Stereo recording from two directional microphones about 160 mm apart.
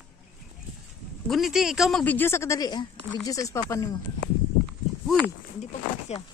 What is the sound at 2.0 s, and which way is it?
Speech, 15° left (ahead or behind).